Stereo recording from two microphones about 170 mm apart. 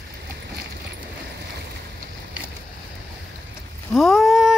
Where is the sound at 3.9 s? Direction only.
Centre (ahead or behind).